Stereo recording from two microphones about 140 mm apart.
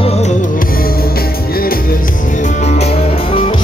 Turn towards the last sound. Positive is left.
turn(degrees=45)  # may be behind; listen again after turning